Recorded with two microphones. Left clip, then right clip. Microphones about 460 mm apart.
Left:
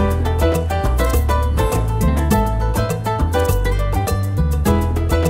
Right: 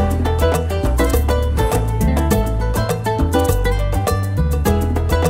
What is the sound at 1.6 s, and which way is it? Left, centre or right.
Music, right.